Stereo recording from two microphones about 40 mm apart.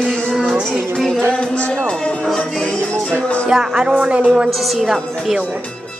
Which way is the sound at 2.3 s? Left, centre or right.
Centre.